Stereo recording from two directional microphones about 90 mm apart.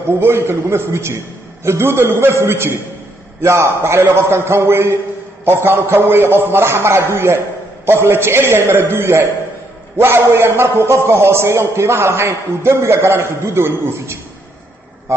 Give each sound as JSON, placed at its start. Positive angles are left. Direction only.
{"t": 0.2, "sound": "a man's voice", "side_deg": -30}